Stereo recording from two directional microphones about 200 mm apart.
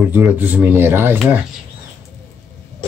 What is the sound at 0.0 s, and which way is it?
Speech, 10° right (ahead or behind).